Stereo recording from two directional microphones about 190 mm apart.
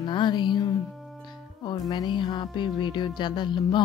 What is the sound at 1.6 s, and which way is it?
Speech, 20° left (ahead or behind).